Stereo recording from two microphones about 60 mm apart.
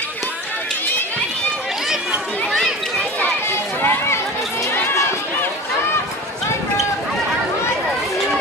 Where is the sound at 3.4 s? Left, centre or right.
Left.